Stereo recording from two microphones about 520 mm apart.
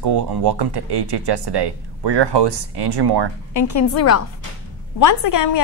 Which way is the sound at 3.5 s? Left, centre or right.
Left.